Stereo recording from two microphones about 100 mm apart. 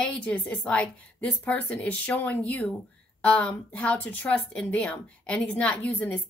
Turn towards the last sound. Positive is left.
turn(degrees=15)  # may be behind; listen again after turning